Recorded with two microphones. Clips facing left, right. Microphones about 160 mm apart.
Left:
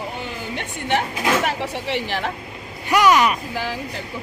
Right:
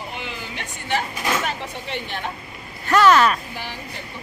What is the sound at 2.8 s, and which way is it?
Speech, 15° left (ahead or behind).